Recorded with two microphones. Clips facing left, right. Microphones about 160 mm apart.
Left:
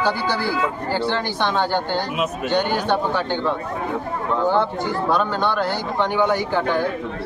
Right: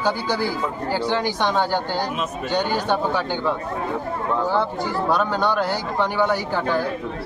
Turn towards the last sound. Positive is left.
turn(degrees=-5)  # may be behind; listen again after turning